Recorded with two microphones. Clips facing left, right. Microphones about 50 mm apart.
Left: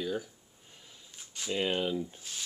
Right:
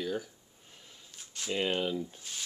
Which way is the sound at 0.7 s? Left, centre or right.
Centre.